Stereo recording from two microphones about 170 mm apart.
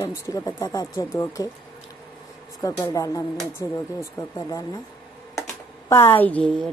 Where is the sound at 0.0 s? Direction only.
20° left (ahead or behind).